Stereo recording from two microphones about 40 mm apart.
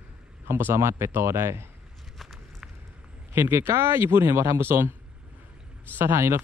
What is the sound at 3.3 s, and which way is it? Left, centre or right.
Speech, right.